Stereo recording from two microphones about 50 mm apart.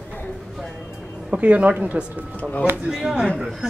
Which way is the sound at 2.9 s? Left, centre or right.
Centre.